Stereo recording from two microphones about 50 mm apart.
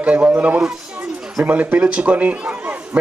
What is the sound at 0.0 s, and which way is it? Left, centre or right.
A man's voice, right.